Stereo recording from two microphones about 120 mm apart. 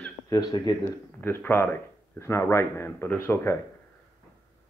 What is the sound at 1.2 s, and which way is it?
Speech, 15° left (ahead or behind).